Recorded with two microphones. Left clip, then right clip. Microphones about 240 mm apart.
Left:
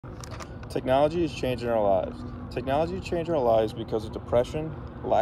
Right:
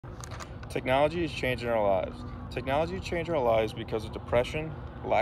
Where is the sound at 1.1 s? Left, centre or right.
Right.